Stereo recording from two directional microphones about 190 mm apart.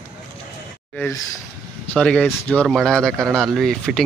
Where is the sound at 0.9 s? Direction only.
10° left (ahead or behind).